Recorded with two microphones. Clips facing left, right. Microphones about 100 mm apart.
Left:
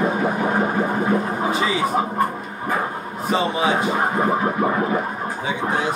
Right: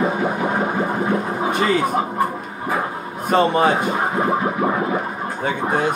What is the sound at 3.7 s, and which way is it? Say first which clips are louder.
Speech: right 1 dB; centre (ahead or behind).